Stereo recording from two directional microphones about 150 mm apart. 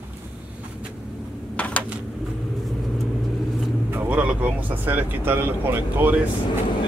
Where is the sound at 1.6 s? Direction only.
10° left (ahead or behind).